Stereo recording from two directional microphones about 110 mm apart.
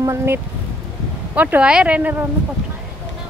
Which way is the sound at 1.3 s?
15° right (ahead or behind).